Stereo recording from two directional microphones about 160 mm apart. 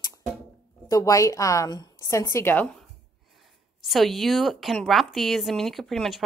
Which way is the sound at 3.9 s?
Centre (ahead or behind).